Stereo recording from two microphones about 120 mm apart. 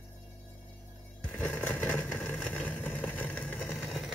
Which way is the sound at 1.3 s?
15° left (ahead or behind).